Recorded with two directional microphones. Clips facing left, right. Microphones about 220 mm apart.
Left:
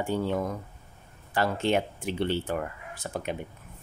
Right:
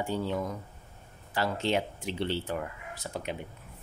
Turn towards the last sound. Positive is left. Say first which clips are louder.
# left 3 dB
turn(degrees=50)  # may be behind; listen again after turning